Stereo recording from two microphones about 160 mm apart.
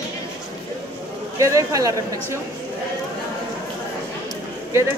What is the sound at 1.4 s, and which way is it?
Speech, 20° right (ahead or behind).